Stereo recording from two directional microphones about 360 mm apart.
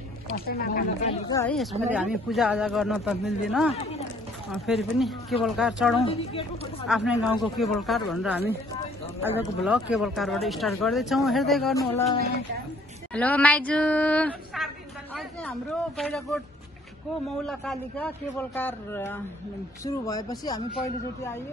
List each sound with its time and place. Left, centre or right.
0.5 s speech: left
1.3 s speech: centre
3.7 s speech: centre
4.5 s speech: centre
13.1 s speech: centre
16.0 s speech: centre